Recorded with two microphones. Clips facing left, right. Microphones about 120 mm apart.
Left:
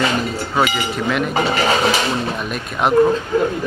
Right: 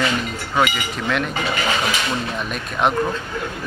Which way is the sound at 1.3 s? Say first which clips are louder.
Left 5 dB; 35° left (ahead or behind).